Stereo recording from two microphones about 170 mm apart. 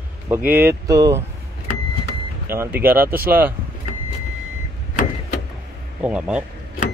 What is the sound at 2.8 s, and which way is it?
Speech, 10° right (ahead or behind).